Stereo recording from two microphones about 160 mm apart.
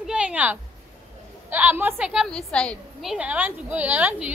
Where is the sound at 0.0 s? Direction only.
5° right (ahead or behind).